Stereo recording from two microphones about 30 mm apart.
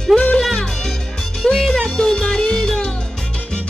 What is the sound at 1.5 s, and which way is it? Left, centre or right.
Music, centre.